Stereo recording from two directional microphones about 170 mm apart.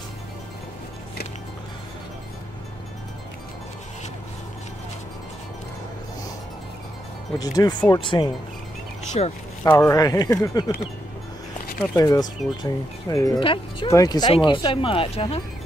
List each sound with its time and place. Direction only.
7.3 s speech: 20° left (ahead or behind)
9.2 s speech: 45° left (ahead or behind)
9.6 s speech: 15° left (ahead or behind)
11.8 s speech: 20° left (ahead or behind); by 15.4 s 35° left (ahead or behind)